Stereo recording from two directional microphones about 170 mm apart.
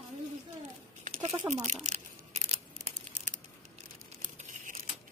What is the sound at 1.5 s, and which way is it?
Speech, 45° right (ahead or behind).